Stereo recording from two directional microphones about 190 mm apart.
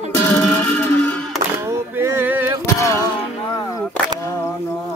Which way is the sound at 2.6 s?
15° left (ahead or behind).